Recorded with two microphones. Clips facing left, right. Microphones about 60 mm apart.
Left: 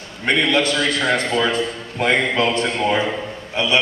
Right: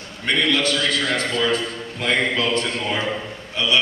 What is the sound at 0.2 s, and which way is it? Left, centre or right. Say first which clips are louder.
A man's voice: left 3 dB; left.